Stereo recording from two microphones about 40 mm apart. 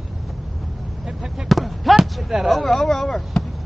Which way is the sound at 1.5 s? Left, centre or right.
Centre.